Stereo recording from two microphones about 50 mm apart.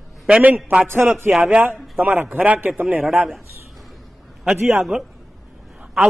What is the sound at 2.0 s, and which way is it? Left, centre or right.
Speech, right.